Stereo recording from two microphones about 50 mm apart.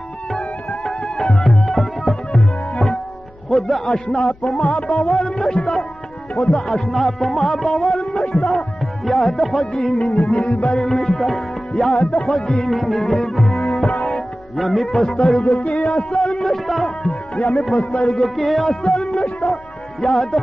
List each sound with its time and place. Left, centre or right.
0.3 s music: centre
3.4 s a man's voice: centre
3.9 s music: centre
4.6 s music: left
5.0 s music: centre
5.6 s music: centre
6.4 s music: centre
6.9 s music: centre
14.0 s speech: centre
15.5 s music: centre
17.0 s music: centre
19.1 s music: centre